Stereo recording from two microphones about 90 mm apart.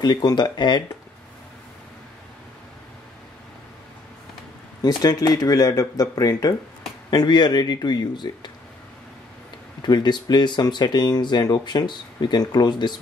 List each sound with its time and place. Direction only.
0.0 s speech: 50° left (ahead or behind)
4.8 s speech: 45° left (ahead or behind)
7.1 s speech: 50° left (ahead or behind)
9.8 s speech: 55° left (ahead or behind)